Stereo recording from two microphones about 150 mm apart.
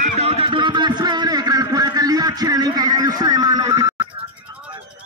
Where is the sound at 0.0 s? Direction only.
40° right (ahead or behind); by 4.2 s 25° right (ahead or behind).